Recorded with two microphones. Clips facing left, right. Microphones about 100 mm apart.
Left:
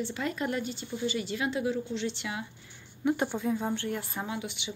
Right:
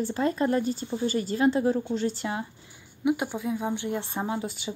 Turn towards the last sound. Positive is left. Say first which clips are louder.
# right 5 dB
turn(degrees=-40)  # may be behind; listen again after turning